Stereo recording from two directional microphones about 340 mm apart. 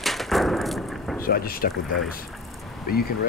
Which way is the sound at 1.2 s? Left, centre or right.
Left.